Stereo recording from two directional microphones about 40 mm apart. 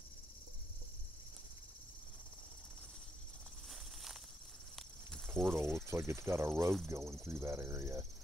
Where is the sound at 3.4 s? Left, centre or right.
Centre.